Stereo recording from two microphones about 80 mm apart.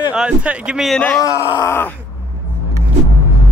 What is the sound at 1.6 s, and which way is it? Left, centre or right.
Speech, left.